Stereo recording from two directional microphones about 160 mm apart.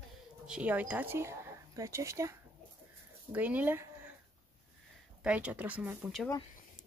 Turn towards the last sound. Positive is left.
turn(degrees=0)  # may be behind; listen again after turning